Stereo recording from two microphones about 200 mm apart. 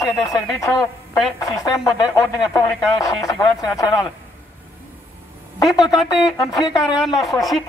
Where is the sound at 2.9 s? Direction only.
15° left (ahead or behind).